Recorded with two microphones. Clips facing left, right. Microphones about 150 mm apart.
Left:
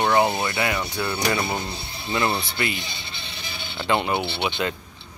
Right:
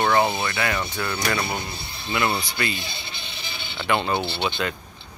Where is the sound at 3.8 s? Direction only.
20° left (ahead or behind).